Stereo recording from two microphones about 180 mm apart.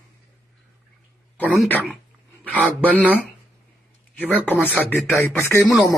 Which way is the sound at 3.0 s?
10° right (ahead or behind).